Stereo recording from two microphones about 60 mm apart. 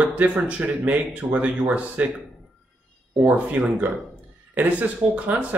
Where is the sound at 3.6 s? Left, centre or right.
Right.